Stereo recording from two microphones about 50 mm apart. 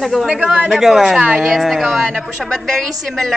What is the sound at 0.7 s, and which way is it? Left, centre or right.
Speech, centre.